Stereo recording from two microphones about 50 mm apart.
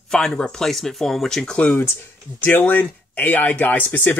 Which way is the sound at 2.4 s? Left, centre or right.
Left.